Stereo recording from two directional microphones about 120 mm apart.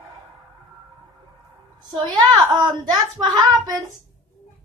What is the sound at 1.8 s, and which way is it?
A child's voice, 35° right (ahead or behind).